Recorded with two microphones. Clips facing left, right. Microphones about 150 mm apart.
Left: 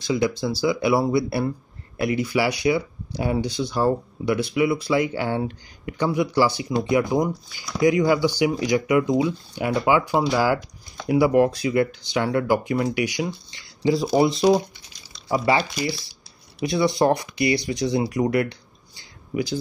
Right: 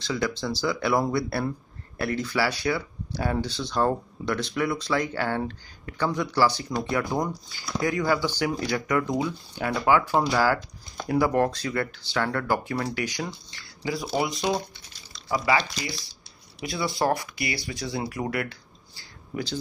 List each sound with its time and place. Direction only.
0.0 s speech: 15° left (ahead or behind)
13.8 s speech: 25° left (ahead or behind)